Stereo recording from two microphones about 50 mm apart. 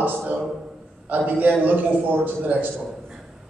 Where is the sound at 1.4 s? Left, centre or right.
Right.